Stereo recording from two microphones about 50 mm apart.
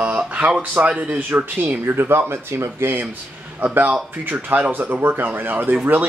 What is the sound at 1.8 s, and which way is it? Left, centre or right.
Speech, right.